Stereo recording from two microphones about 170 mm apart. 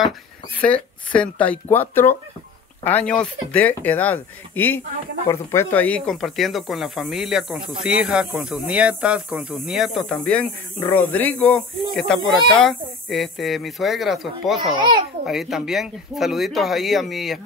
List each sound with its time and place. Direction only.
0.6 s speech: 5° left (ahead or behind)
14.8 s a child's voice: 25° right (ahead or behind)
15.2 s speech: centre (ahead or behind)